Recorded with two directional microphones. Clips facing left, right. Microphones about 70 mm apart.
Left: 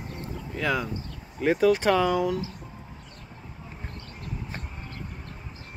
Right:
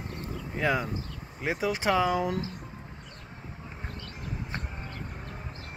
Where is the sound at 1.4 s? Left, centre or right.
Centre.